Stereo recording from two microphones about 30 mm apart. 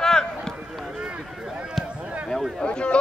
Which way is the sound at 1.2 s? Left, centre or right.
Centre.